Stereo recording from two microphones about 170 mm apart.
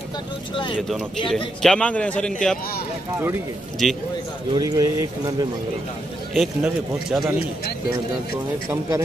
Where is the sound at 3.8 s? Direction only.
Centre (ahead or behind).